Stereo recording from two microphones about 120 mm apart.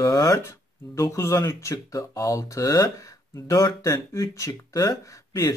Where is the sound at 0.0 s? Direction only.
30° left (ahead or behind).